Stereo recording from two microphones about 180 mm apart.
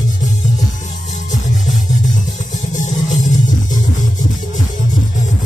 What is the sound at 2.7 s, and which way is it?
Music, 45° left (ahead or behind).